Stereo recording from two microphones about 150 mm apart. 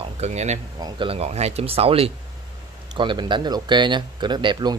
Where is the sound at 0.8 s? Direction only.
35° right (ahead or behind).